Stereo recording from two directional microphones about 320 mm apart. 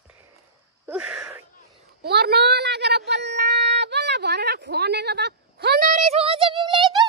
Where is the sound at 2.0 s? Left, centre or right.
Right.